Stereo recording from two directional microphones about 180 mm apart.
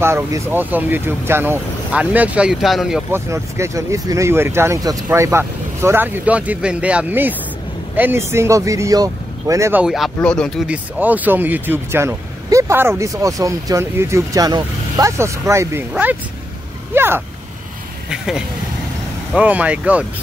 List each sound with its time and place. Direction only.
0.0 s speech: 15° right (ahead or behind)
3.1 s speech: 15° right (ahead or behind); by 10.6 s 5° left (ahead or behind)
10.7 s speech: 10° right (ahead or behind)